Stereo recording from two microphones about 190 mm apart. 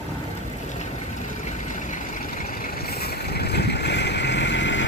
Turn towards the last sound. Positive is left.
turn(degrees=70)  # may be behind; listen again after turning